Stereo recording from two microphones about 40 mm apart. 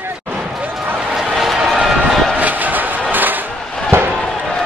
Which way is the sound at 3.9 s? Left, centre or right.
Right.